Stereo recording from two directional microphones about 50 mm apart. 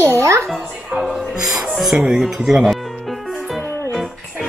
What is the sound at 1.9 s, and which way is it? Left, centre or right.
Speech, centre.